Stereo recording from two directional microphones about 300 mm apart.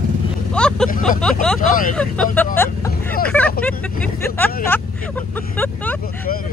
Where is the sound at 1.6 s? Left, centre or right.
Left.